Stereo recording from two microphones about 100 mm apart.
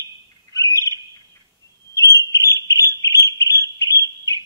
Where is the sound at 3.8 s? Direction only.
30° left (ahead or behind).